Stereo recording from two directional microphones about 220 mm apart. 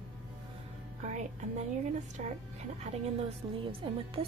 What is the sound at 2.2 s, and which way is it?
Speech, 35° right (ahead or behind).